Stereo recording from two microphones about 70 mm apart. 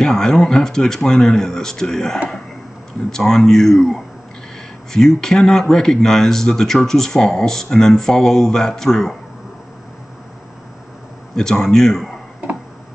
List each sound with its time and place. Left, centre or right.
0.0 s speech: centre
11.3 s speech: centre